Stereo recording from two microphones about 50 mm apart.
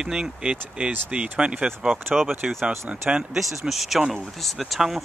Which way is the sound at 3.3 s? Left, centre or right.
Centre.